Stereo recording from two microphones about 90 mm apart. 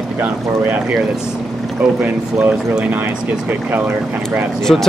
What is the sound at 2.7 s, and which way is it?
Speech, 15° right (ahead or behind).